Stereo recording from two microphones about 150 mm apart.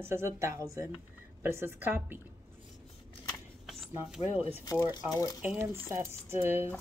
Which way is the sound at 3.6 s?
Centre (ahead or behind).